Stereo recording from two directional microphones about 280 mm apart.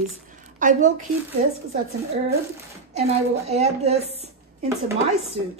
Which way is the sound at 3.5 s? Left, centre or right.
Right.